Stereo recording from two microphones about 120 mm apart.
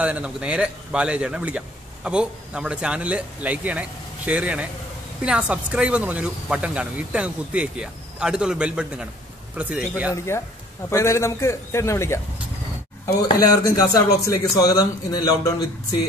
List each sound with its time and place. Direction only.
0.0 s speech: 10° right (ahead or behind)
10.1 s a man's voice: 25° left (ahead or behind)
13.7 s a man's voice: 30° left (ahead or behind)